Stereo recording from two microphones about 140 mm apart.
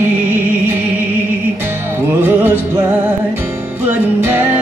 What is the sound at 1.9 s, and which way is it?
Music, 15° right (ahead or behind).